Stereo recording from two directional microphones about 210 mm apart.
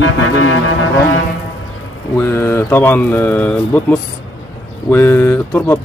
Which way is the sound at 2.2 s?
10° left (ahead or behind).